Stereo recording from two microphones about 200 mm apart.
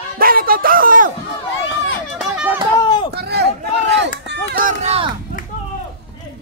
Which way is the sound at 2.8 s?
20° left (ahead or behind).